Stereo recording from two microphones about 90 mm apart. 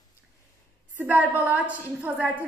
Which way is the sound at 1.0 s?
20° right (ahead or behind).